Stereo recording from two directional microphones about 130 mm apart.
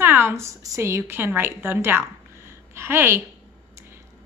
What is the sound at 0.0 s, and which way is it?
A woman's voice, 15° right (ahead or behind).